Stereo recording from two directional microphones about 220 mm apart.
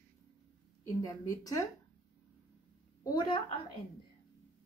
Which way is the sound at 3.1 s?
20° left (ahead or behind).